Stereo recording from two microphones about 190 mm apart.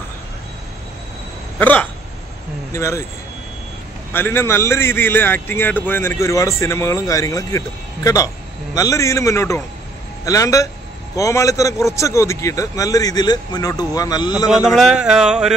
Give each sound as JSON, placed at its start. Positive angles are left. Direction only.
{"t": 1.6, "sound": "a man's voice", "side_deg": 10}
{"t": 4.1, "sound": "a man's voice", "side_deg": 10}
{"t": 14.5, "sound": "speech", "side_deg": 0}